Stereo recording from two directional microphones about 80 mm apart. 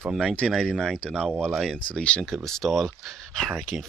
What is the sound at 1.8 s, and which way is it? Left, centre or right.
Speech, centre.